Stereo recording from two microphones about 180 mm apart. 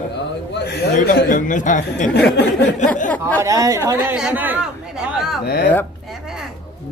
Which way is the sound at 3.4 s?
20° right (ahead or behind).